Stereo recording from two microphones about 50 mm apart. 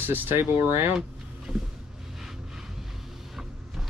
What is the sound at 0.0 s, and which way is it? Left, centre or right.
Speech, right.